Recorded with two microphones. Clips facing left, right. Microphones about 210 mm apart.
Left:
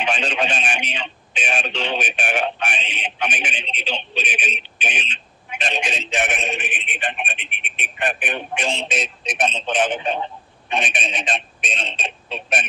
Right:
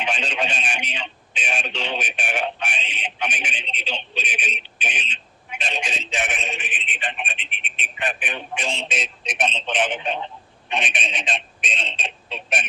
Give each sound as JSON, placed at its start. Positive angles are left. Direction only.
{"t": 0.0, "sound": "a man's voice", "side_deg": 70}
{"t": 8.7, "sound": "speech", "side_deg": 40}